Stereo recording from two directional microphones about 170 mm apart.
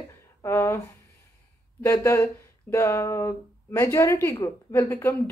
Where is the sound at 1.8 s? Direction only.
15° left (ahead or behind).